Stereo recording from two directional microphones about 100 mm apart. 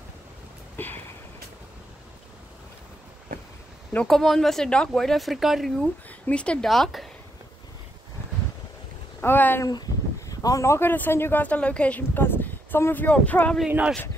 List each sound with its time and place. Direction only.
0.7 s a sound: 20° left (ahead or behind)
3.9 s speech: 5° left (ahead or behind)
6.2 s speech: 10° left (ahead or behind)
9.2 s speech: 20° left (ahead or behind)
9.7 s speech: 40° left (ahead or behind); by 13.6 s 15° left (ahead or behind)
13.7 s speech: 15° right (ahead or behind)